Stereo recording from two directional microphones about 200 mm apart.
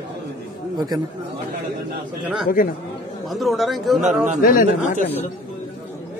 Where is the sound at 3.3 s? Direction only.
Centre (ahead or behind).